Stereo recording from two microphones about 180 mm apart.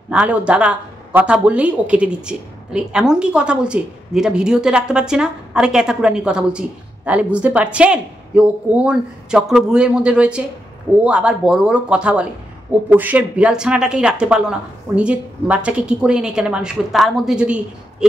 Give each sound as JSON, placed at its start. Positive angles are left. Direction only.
{"t": 0.1, "sound": "speech", "side_deg": -5}